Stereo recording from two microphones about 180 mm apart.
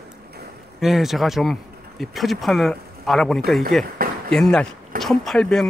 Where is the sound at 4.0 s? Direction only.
55° right (ahead or behind).